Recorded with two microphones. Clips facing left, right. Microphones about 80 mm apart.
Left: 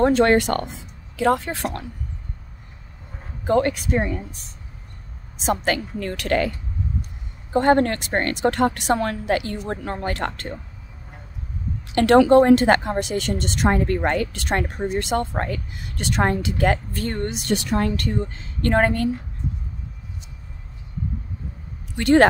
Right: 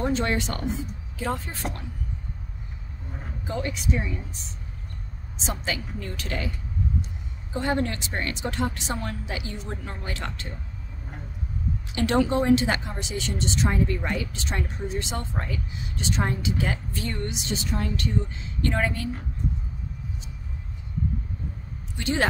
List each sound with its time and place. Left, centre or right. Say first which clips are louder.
0.0 s a woman's voice: left 9 dB; left
1.1 s speech: left 10 dB; left
3.4 s a woman's voice: left 10 dB; left
5.4 s a woman's voice: left 9 dB; left
7.5 s a woman's voice: left 9 dB; left
11.9 s a woman's voice: left 10 dB; left
21.9 s speech: left 11 dB; left